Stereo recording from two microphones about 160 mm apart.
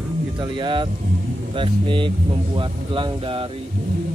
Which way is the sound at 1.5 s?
30° right (ahead or behind).